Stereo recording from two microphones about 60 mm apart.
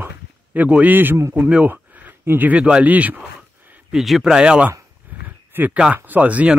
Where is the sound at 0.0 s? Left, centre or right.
Right.